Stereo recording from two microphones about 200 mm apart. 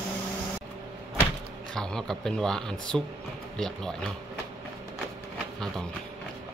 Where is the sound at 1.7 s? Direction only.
5° left (ahead or behind).